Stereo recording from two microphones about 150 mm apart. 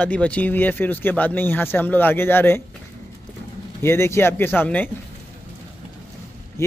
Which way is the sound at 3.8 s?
15° left (ahead or behind).